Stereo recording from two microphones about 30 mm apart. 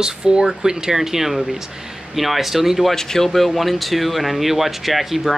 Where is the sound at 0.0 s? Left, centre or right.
Right; by 2.9 s centre.